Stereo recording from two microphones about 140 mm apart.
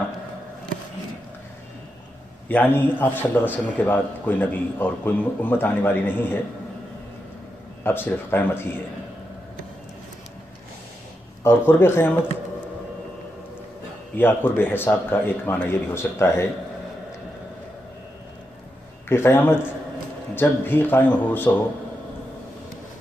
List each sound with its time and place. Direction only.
2.4 s a man's voice: 10° left (ahead or behind)
7.8 s a man's voice: 15° left (ahead or behind)
11.4 s a man's voice: 15° left (ahead or behind)
14.1 s a man's voice: 15° left (ahead or behind)
19.0 s a man's voice: 15° left (ahead or behind)